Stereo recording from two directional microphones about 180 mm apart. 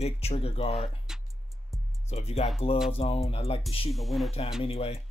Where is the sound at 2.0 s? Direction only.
35° left (ahead or behind).